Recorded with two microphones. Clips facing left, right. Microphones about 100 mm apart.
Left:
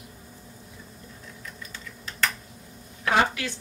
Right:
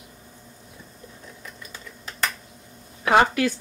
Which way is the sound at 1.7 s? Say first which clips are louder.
Right 1 dB; 15° right (ahead or behind).